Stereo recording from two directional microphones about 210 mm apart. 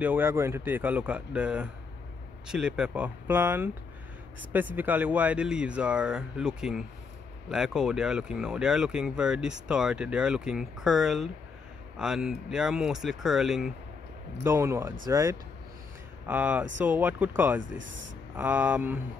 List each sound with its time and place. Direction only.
0.0 s a man's voice: 10° right (ahead or behind)
17.6 s speech: 60° right (ahead or behind)
18.3 s a man's voice: 5° right (ahead or behind)